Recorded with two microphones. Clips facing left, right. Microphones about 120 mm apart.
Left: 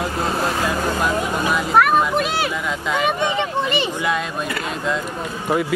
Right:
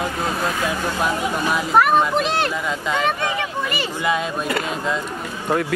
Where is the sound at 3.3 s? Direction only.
25° left (ahead or behind).